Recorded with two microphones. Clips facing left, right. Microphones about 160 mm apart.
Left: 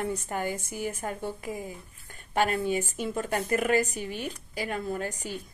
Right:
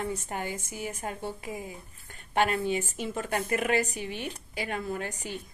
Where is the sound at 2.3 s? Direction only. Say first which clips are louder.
Even; 40° left (ahead or behind).